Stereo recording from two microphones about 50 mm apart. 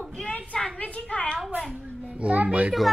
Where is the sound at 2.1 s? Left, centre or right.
Right.